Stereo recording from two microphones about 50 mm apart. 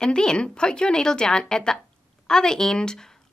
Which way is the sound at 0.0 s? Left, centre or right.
Centre.